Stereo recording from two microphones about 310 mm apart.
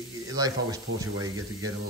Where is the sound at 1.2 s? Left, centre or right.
Right.